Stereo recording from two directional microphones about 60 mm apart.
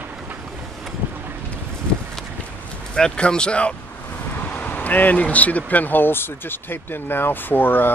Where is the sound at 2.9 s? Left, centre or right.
Centre.